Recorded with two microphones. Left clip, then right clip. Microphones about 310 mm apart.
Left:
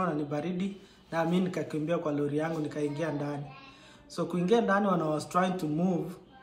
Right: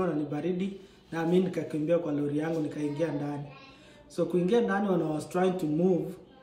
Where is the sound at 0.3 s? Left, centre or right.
Centre.